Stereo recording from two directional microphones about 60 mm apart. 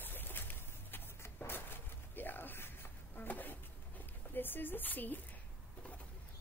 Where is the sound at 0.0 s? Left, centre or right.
Left.